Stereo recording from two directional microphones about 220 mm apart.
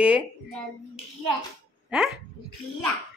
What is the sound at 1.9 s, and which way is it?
Speech, 5° right (ahead or behind).